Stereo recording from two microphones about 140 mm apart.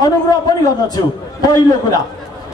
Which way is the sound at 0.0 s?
30° left (ahead or behind).